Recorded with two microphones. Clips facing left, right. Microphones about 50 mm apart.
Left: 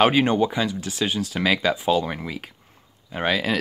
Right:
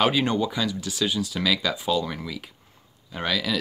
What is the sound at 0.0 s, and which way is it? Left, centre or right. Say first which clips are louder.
Speech: left 4 dB; left.